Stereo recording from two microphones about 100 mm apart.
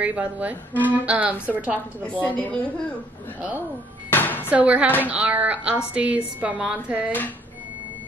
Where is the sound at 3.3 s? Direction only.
15° right (ahead or behind).